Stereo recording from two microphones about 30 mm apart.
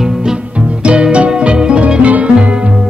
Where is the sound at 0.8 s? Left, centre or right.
Right.